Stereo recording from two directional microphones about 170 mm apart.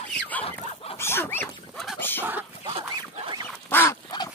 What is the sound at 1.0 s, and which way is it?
Dog, 15° left (ahead or behind).